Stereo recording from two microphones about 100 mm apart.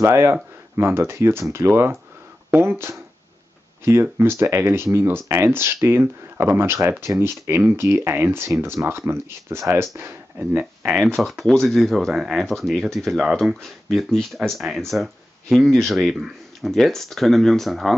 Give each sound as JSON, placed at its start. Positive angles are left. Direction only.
{"t": 0.0, "sound": "speech", "side_deg": -25}
{"t": 11.1, "sound": "speech", "side_deg": 5}